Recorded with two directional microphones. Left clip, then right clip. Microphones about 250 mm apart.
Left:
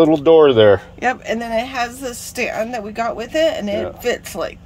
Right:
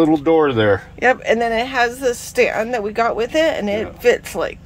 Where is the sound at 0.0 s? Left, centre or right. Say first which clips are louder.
Left 4 dB; left.